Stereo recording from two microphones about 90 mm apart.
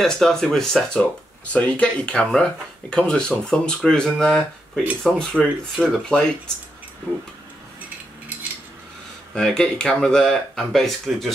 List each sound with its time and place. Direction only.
0.0 s speech: 5° left (ahead or behind)
9.3 s speech: 10° left (ahead or behind)